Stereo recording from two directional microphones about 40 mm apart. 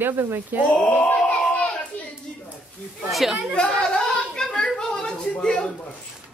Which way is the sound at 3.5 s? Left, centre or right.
Left.